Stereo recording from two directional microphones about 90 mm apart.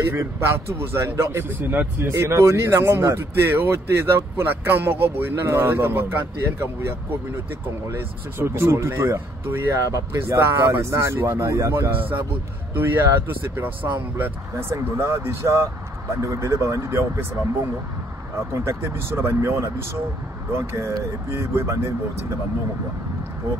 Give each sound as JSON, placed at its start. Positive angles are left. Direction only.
{"t": 0.0, "sound": "speech", "side_deg": -30}
{"t": 18.5, "sound": "speech", "side_deg": -30}